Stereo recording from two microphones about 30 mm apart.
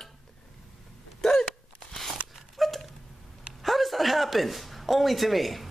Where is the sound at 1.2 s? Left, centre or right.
Centre.